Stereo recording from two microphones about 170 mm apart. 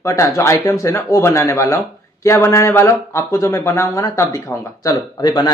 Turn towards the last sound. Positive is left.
turn(degrees=25)  # may be behind; listen again after turning